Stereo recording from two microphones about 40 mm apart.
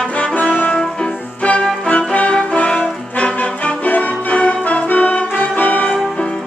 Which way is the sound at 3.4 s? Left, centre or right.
Left.